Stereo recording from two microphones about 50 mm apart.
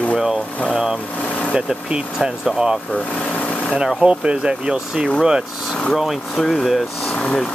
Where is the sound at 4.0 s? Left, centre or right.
Centre.